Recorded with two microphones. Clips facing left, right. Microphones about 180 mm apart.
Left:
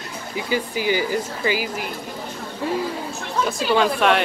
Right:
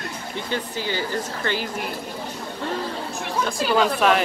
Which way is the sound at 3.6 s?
Centre (ahead or behind).